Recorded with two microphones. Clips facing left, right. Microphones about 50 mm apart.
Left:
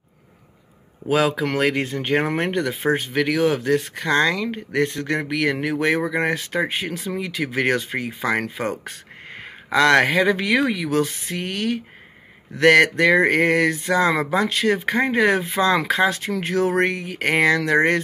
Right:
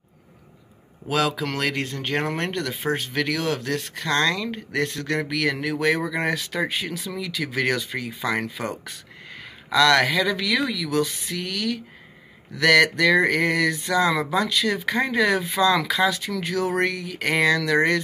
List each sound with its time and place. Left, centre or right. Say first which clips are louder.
1.0 s speech: left 4 dB; centre; by 17.7 s left